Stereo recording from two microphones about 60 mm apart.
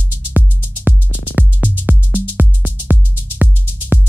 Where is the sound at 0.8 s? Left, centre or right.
Right.